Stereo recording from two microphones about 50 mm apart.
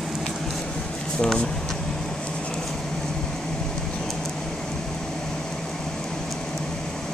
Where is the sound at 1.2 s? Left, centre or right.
Centre.